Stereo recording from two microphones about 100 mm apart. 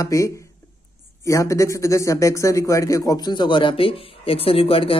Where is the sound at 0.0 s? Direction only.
35° left (ahead or behind).